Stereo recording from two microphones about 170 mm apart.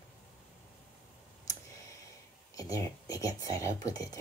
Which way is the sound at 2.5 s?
20° left (ahead or behind).